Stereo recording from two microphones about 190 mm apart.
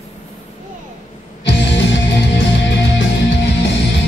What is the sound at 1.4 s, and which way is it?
Music, 70° left (ahead or behind).